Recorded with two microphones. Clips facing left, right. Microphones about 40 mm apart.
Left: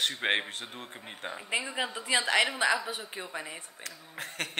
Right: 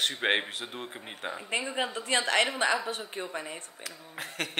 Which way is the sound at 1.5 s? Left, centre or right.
Centre.